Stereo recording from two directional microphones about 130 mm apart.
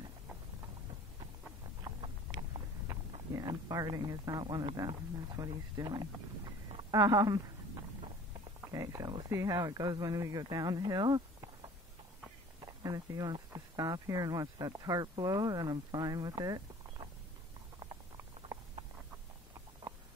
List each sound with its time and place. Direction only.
3.3 s speech: 30° right (ahead or behind)
6.9 s a sound: 30° right (ahead or behind)
9.3 s speech: 25° right (ahead or behind)